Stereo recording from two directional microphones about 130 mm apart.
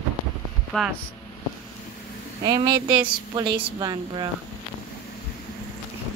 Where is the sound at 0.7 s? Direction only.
5° left (ahead or behind).